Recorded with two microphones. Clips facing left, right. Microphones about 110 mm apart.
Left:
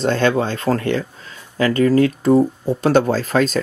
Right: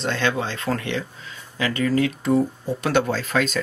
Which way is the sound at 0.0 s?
40° left (ahead or behind).